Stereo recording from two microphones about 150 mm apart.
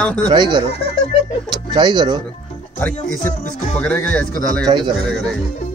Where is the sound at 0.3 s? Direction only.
30° right (ahead or behind).